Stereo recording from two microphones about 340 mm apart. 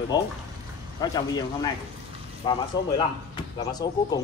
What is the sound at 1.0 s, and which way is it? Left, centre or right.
A man's voice, centre.